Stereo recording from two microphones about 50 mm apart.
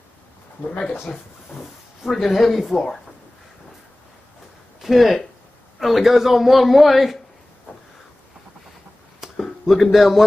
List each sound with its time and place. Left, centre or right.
1.1 s speech: left
1.6 s speech: centre
4.8 s speech: centre
9.4 s speech: centre